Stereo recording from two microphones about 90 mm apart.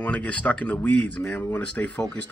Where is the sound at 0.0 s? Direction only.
15° left (ahead or behind).